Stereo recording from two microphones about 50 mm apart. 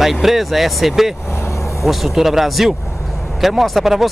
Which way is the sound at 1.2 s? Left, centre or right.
Left.